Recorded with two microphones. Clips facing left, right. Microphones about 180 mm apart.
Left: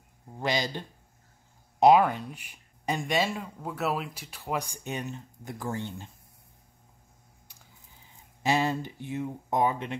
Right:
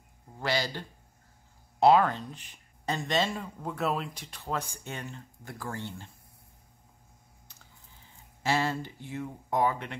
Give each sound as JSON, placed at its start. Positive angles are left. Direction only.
{"t": 0.4, "sound": "speech", "side_deg": 20}
{"t": 8.4, "sound": "speech", "side_deg": 15}